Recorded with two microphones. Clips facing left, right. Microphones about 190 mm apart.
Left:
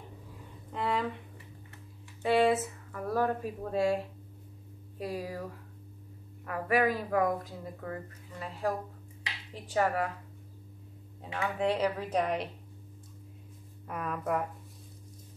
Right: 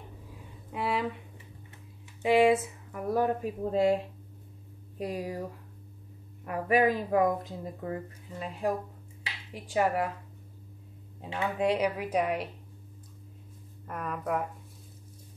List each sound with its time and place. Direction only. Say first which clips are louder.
0.7 s a sound: right 1 dB; 10° right (ahead or behind)
2.2 s speech: right 3 dB; 15° right (ahead or behind)
6.4 s speech: right 3 dB; 20° right (ahead or behind)
11.1 s speech: right 2 dB; 20° right (ahead or behind)
13.8 s speech: even; centre (ahead or behind)